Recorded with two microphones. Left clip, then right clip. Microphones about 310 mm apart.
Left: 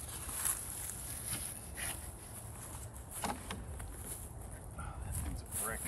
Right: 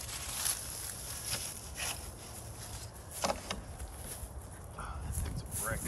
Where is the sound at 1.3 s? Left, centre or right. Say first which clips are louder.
Right 7 dB; centre.